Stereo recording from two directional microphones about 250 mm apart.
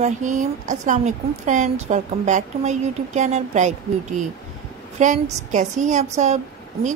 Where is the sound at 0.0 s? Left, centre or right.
Right.